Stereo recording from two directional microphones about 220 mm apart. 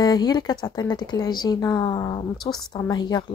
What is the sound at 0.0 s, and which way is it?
Speech, 20° left (ahead or behind).